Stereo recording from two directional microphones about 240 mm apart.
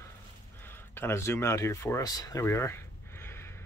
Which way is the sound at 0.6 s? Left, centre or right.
Centre.